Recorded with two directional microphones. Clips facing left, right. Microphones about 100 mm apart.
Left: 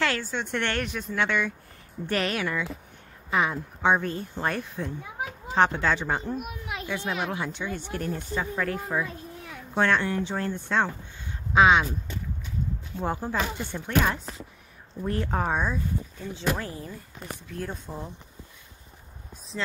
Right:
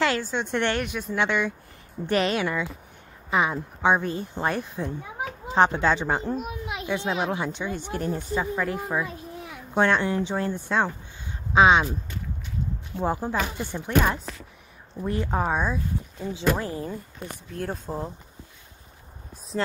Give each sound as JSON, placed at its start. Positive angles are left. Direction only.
{"t": 0.0, "sound": "speech", "side_deg": -20}
{"t": 11.5, "sound": "speech", "side_deg": -25}
{"t": 13.0, "sound": "speech", "side_deg": -15}
{"t": 16.3, "sound": "speech", "side_deg": -20}
{"t": 17.5, "sound": "speech", "side_deg": -40}